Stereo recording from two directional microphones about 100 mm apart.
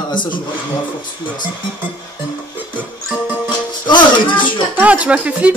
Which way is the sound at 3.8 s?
50° left (ahead or behind).